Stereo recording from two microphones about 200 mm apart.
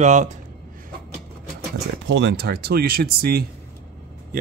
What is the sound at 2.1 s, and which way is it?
Speech, 60° right (ahead or behind).